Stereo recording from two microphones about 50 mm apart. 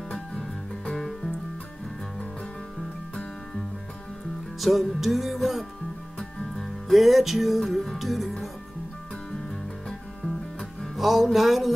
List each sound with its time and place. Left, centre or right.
0.1 s music: centre
4.6 s music: centre
6.1 s music: centre
6.9 s music: centre
9.8 s music: centre
11.0 s music: centre